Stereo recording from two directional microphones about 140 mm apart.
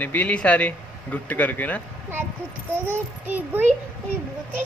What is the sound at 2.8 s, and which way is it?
Speech, 15° right (ahead or behind).